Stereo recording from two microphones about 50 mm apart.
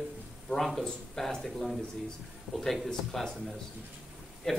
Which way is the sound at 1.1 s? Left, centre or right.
Centre.